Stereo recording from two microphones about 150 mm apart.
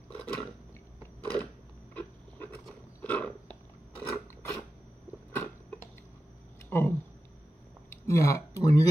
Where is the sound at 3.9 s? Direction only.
20° left (ahead or behind).